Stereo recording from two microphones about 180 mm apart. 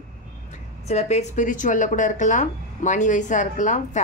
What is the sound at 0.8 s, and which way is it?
A woman's voice, 40° left (ahead or behind).